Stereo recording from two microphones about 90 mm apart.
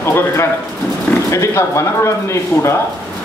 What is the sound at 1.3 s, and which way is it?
Speech, 35° left (ahead or behind).